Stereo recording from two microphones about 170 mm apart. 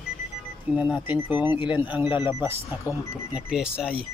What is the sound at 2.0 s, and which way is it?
Speech, 30° left (ahead or behind).